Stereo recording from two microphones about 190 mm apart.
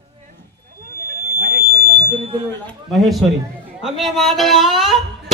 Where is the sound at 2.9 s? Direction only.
Centre (ahead or behind).